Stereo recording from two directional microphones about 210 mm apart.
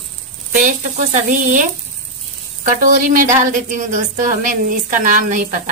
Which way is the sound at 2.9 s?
40° right (ahead or behind).